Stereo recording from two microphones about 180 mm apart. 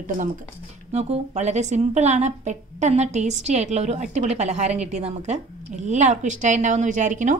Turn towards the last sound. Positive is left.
turn(degrees=-45)  # may be behind; listen again after turning